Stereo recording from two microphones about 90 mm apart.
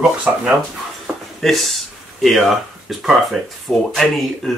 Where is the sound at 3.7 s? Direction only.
Centre (ahead or behind).